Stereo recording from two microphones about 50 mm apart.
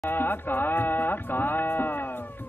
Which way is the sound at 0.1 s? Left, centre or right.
Left.